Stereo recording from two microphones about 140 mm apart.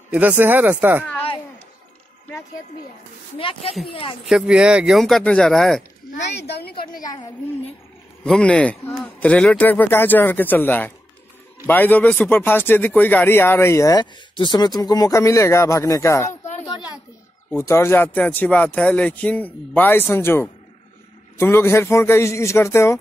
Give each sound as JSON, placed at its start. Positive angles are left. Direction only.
{"t": 0.1, "sound": "speech", "side_deg": -10}
{"t": 3.3, "sound": "speech", "side_deg": 40}
{"t": 4.3, "sound": "speech", "side_deg": -5}
{"t": 6.7, "sound": "a woman's voice", "side_deg": 90}
{"t": 7.0, "sound": "speech", "side_deg": 30}
{"t": 8.2, "sound": "speech", "side_deg": 5}
{"t": 17.5, "sound": "speech", "side_deg": 20}